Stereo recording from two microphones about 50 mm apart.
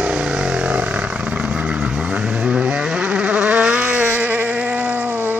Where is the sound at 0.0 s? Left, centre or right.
Right.